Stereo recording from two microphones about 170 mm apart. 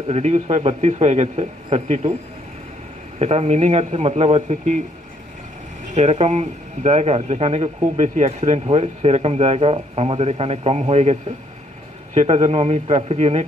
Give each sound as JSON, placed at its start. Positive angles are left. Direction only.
{"t": 0.1, "sound": "speech", "side_deg": -40}
{"t": 3.2, "sound": "speech", "side_deg": -40}
{"t": 5.9, "sound": "speech", "side_deg": -40}